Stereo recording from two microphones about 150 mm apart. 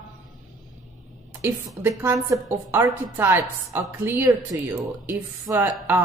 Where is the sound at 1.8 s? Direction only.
15° right (ahead or behind).